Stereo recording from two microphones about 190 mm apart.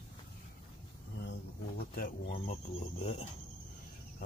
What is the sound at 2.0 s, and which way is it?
Speech, 45° left (ahead or behind).